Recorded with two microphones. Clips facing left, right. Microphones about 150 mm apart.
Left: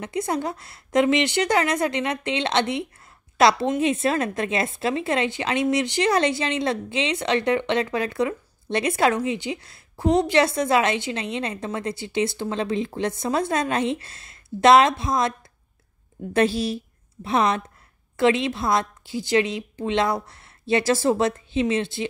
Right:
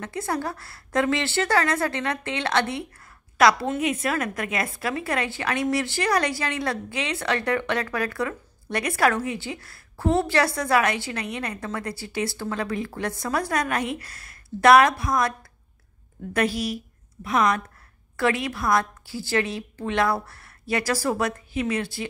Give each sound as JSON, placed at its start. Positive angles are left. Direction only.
{"t": 0.0, "sound": "a woman's voice", "side_deg": 20}
{"t": 16.3, "sound": "a woman's voice", "side_deg": 30}